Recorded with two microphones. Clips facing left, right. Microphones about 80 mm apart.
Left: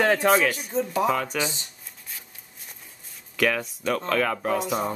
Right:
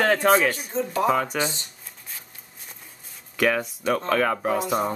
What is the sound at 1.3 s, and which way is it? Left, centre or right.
Speech, centre.